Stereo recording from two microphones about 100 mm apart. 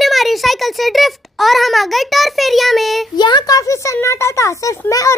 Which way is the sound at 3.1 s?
45° left (ahead or behind).